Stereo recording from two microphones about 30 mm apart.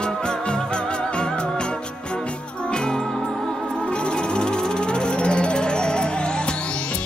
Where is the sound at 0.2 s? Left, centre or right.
Left; by 3.6 s centre.